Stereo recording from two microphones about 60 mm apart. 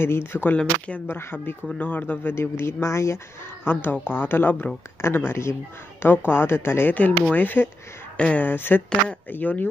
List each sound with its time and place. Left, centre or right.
0.0 s speech: left
0.6 s speech: left
1.0 s speech: left
2.3 s speech: left
3.6 s speech: left
6.9 s speech: left
8.2 s speech: centre
8.5 s speech: left